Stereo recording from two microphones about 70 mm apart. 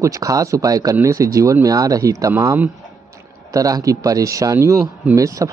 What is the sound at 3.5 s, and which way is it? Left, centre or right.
Speech, right.